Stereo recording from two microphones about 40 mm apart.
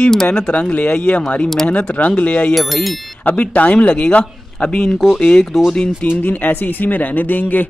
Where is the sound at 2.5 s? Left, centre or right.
Centre.